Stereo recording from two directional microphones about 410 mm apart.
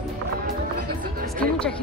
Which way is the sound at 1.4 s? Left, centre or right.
Centre.